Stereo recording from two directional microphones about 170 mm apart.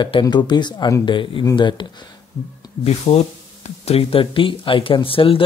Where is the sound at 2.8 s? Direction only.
40° left (ahead or behind).